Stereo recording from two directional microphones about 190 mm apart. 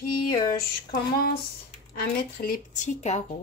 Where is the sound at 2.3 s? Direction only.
50° left (ahead or behind).